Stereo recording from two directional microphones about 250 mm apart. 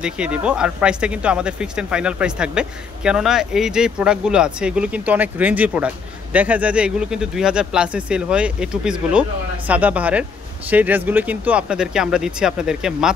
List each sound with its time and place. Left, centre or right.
0.0 s speech: centre